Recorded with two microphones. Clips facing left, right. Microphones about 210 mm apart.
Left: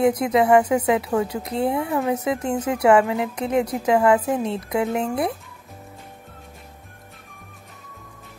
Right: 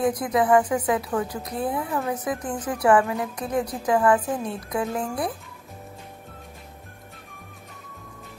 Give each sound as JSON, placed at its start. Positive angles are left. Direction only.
{"t": 0.0, "sound": "a woman's voice", "side_deg": 25}